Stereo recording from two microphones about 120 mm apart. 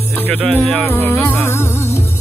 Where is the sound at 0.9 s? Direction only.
20° left (ahead or behind).